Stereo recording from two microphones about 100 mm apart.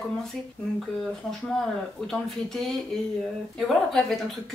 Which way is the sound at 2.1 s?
5° left (ahead or behind).